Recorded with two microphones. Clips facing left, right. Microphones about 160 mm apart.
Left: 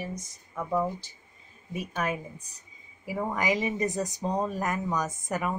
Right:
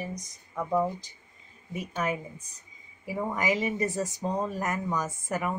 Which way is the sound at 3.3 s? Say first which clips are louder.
Even; 15° left (ahead or behind).